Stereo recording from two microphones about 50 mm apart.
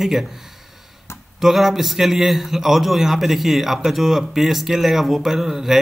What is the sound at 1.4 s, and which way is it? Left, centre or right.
A man's voice, centre.